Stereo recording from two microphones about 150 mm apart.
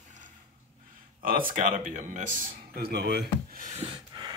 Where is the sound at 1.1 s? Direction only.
65° right (ahead or behind).